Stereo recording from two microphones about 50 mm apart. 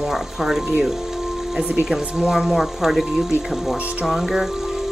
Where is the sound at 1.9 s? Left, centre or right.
Centre.